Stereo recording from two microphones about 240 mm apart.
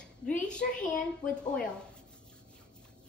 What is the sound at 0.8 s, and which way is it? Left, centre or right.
Speech, left.